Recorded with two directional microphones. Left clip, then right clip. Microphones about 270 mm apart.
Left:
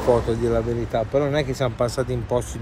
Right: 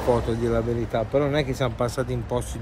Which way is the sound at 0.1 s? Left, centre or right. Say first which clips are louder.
Left 3 dB; centre.